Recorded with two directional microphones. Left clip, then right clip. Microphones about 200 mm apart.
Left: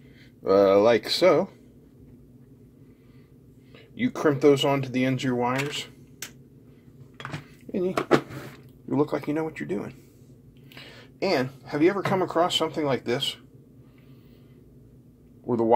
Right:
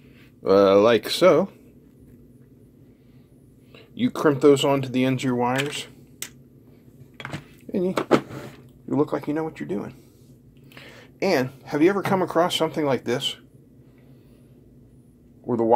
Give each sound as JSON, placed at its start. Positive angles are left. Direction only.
{"t": 0.4, "sound": "speech", "side_deg": -15}
{"t": 3.7, "sound": "speech", "side_deg": -15}
{"t": 7.2, "sound": "dishes", "side_deg": -20}
{"t": 8.8, "sound": "speech", "side_deg": -5}
{"t": 15.4, "sound": "speech", "side_deg": -5}